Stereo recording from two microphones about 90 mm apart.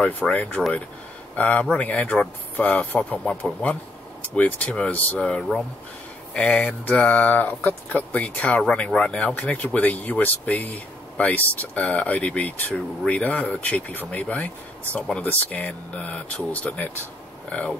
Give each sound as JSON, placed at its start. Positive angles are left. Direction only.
{"t": 0.0, "sound": "speech", "side_deg": 15}